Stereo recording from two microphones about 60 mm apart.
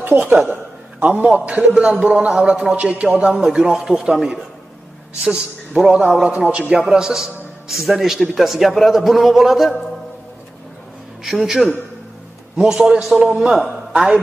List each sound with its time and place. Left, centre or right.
0.0 s a woman's voice: right
0.9 s a man's voice: right; by 9.8 s centre
11.2 s a man's voice: centre